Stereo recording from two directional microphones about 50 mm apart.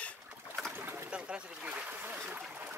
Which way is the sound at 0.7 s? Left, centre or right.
Right.